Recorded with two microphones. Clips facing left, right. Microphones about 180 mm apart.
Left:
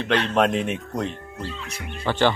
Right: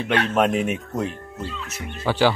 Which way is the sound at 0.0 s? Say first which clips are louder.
Even; 5° right (ahead or behind).